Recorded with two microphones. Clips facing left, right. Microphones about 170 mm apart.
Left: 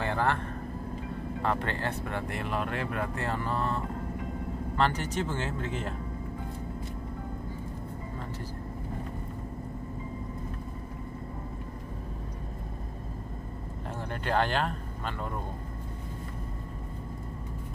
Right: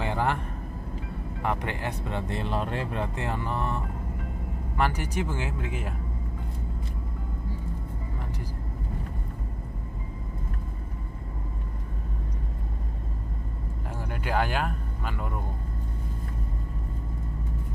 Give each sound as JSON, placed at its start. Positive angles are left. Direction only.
{"t": 0.0, "sound": "vehicle", "side_deg": -15}
{"t": 1.4, "sound": "speech", "side_deg": -15}
{"t": 14.2, "sound": "speech", "side_deg": -10}